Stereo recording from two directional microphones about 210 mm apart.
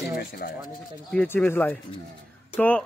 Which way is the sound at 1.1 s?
5° left (ahead or behind).